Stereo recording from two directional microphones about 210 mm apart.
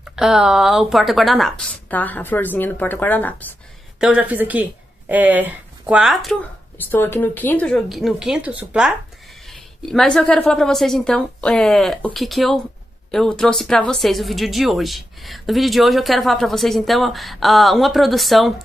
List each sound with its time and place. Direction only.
0.0 s speech: 5° right (ahead or behind)
4.0 s speech: 5° right (ahead or behind)